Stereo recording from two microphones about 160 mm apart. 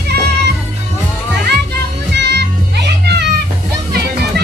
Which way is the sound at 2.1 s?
90° right.